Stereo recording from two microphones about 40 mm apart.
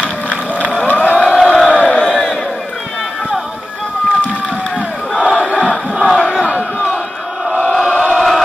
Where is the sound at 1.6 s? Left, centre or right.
Left.